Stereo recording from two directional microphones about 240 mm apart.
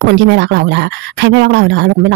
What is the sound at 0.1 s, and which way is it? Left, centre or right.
Speech, right.